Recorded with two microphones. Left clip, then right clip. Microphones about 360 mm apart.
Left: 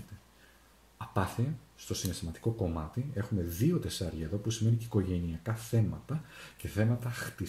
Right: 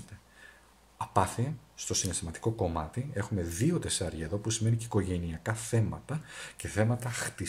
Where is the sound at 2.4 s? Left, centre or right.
Right.